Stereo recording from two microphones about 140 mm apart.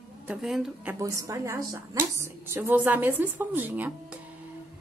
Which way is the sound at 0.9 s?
20° right (ahead or behind).